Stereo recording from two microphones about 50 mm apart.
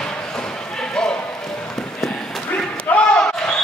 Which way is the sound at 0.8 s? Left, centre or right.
Centre.